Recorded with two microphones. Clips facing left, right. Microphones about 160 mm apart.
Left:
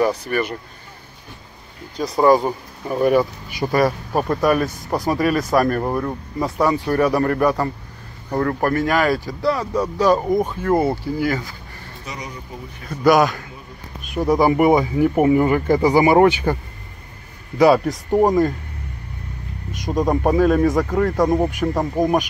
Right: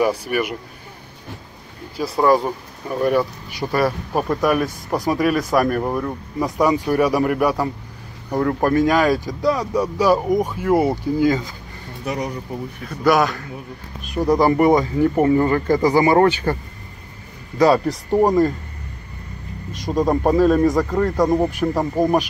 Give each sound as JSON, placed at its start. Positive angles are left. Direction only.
{"t": 0.0, "sound": "speech", "side_deg": -10}
{"t": 2.0, "sound": "a man's voice", "side_deg": 0}
{"t": 5.5, "sound": "a man's voice", "side_deg": -5}
{"t": 6.6, "sound": "speech", "side_deg": -15}
{"t": 12.0, "sound": "speech", "side_deg": -60}
{"t": 13.0, "sound": "a man's voice", "side_deg": 0}
{"t": 17.7, "sound": "a man's voice", "side_deg": 0}
{"t": 19.9, "sound": "a man's voice", "side_deg": 0}